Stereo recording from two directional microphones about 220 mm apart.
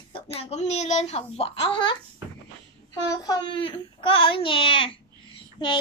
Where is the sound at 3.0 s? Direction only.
15° left (ahead or behind).